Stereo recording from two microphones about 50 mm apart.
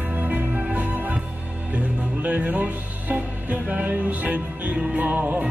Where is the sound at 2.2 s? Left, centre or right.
Right.